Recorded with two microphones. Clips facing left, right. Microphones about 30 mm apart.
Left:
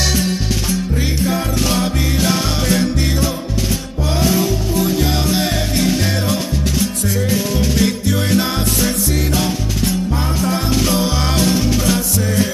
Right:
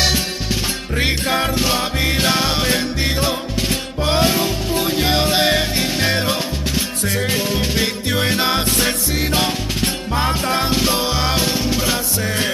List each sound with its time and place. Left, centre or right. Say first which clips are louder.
0.7 s music: right 2 dB; right
1.7 s music: even; right